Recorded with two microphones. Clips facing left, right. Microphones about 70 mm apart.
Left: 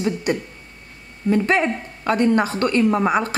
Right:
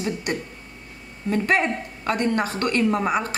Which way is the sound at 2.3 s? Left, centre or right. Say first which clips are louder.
Left 4 dB; left.